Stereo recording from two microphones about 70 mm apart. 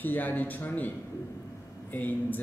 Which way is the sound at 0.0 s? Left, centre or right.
Left.